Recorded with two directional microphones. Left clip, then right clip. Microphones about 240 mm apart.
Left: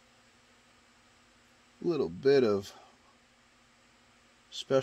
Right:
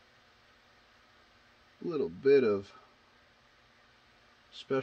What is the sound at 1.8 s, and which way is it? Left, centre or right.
Speech, left.